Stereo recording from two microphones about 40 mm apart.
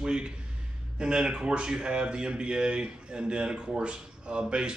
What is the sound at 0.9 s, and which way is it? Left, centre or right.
Speech, right.